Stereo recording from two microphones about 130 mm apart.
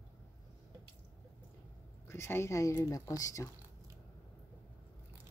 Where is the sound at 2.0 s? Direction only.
20° left (ahead or behind).